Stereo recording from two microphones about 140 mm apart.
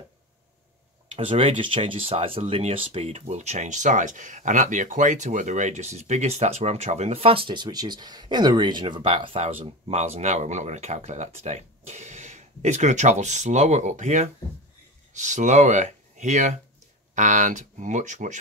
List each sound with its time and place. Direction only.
1.0 s speech: 45° right (ahead or behind)
7.4 s speech: 30° right (ahead or behind); by 18.4 s 60° right (ahead or behind)